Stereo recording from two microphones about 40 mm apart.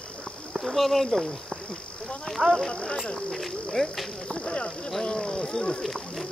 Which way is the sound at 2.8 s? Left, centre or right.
Centre.